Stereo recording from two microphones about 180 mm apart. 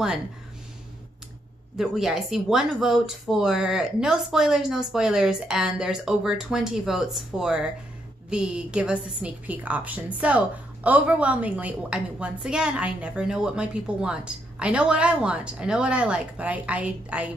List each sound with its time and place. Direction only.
1.8 s a woman's voice: centre (ahead or behind)